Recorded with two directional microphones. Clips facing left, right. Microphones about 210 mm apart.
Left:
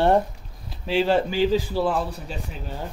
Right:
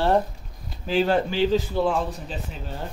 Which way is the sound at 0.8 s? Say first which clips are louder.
Left 1 dB; centre (ahead or behind).